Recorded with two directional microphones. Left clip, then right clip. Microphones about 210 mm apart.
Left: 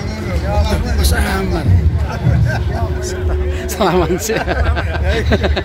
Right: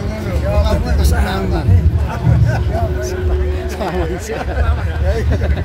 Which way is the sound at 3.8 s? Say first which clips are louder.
Left 8 dB; 40° left (ahead or behind).